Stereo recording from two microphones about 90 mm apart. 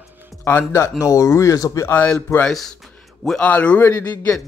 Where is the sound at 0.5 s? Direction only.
30° left (ahead or behind).